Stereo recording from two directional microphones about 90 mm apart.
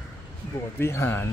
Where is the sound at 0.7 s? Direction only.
30° left (ahead or behind).